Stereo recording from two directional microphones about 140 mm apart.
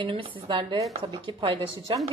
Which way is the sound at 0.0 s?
40° right (ahead or behind).